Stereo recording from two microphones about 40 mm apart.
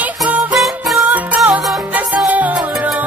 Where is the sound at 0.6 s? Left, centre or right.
Centre.